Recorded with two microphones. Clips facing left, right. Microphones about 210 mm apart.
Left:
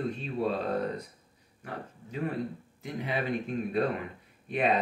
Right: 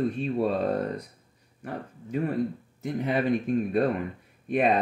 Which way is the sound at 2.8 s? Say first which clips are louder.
Right 6 dB; 45° right (ahead or behind).